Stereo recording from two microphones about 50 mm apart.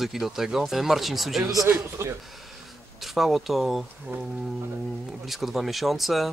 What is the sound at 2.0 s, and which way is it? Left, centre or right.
Speech, right.